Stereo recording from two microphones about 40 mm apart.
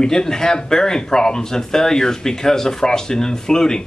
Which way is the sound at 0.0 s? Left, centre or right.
Centre.